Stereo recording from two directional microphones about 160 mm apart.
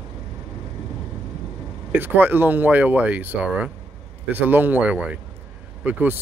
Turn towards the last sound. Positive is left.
turn(degrees=-10)  # may be behind; listen again after turning